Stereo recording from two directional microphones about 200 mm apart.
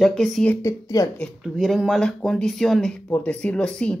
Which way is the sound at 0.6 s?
15° left (ahead or behind).